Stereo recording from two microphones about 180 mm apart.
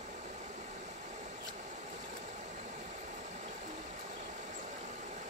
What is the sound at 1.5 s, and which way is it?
Vehicle, 40° right (ahead or behind).